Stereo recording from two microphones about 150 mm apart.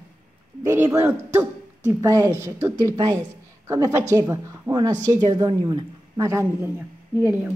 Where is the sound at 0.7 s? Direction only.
20° right (ahead or behind).